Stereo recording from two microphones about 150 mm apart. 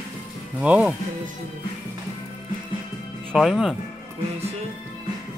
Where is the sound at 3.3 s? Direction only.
Centre (ahead or behind).